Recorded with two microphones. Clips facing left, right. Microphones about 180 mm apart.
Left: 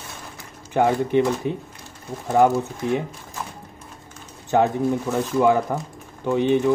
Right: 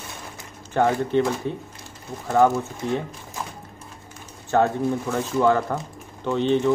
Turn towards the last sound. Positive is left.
turn(degrees=15)  # may be behind; listen again after turning